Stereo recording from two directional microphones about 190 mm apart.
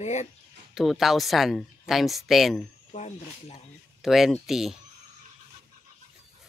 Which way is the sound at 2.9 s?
35° left (ahead or behind).